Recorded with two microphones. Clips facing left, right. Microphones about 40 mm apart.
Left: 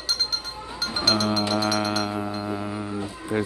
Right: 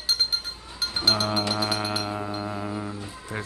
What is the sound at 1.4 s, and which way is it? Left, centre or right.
Music, centre.